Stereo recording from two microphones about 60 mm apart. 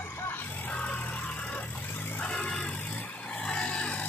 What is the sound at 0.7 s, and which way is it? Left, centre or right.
Music, left.